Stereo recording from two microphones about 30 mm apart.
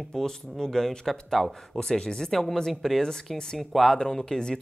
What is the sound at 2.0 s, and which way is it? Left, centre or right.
Speech, left.